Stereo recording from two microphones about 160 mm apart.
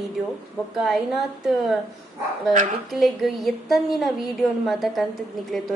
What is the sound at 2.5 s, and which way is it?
Speech, 50° right (ahead or behind).